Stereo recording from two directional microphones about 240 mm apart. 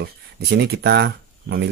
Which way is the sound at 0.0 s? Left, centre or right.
Right.